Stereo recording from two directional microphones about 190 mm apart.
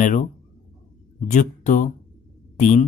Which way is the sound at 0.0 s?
40° left (ahead or behind).